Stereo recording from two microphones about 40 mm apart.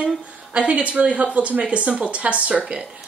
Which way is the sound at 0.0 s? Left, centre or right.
Right.